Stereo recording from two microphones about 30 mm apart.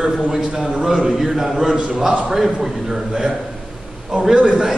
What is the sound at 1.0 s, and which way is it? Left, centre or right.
A man's voice, centre.